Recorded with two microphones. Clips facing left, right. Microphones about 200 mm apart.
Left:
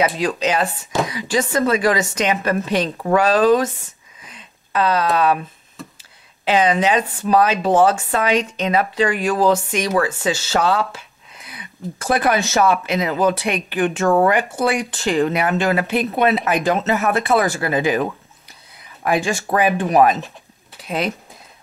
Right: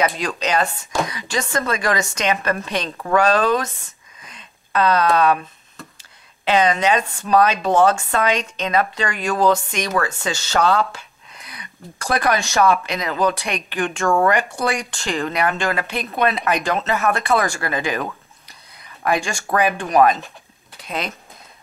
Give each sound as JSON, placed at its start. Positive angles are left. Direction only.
{"t": 0.4, "sound": "speech", "side_deg": 5}
{"t": 4.2, "sound": "a sound", "side_deg": 5}
{"t": 6.4, "sound": "speech", "side_deg": 10}
{"t": 14.0, "sound": "speech", "side_deg": 20}
{"t": 14.3, "sound": "speech", "side_deg": 5}
{"t": 18.8, "sound": "a sound", "side_deg": 5}
{"t": 19.5, "sound": "speech", "side_deg": 5}